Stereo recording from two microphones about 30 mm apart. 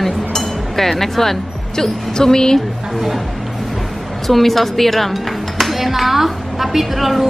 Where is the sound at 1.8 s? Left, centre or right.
Centre.